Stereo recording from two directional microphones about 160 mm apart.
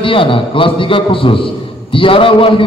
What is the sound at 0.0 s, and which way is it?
A man's voice, 35° left (ahead or behind).